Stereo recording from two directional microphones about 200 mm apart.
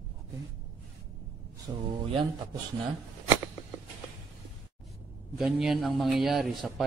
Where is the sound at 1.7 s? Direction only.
15° right (ahead or behind).